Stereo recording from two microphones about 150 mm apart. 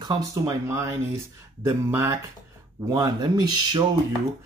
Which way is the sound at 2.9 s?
25° right (ahead or behind).